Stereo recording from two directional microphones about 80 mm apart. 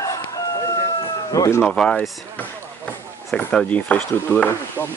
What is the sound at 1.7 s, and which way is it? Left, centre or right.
Speech, centre.